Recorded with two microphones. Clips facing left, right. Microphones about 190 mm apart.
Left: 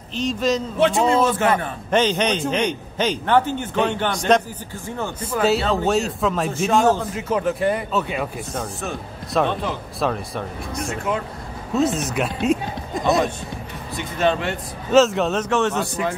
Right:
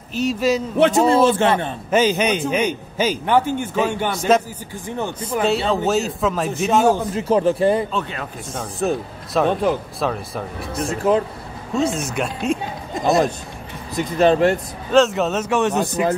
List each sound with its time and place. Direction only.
0.1 s a man's voice: 10° right (ahead or behind)
0.7 s a man's voice: 55° right (ahead or behind)
1.0 s a man's voice: 30° right (ahead or behind)
1.9 s a man's voice: 5° right (ahead or behind)
4.8 s a man's voice: 15° right (ahead or behind)
5.4 s speech: centre (ahead or behind)
7.2 s speech: 30° right (ahead or behind)
7.9 s speech: 10° left (ahead or behind)
9.3 s speech: centre (ahead or behind)
11.7 s speech: centre (ahead or behind)
12.4 s a sound: centre (ahead or behind)
13.9 s speech: 40° right (ahead or behind)
14.9 s speech: centre (ahead or behind); by 15.9 s 15° right (ahead or behind)